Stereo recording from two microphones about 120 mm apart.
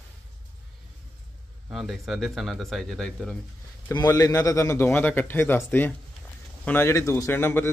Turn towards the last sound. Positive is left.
turn(degrees=20)  # may be behind; listen again after turning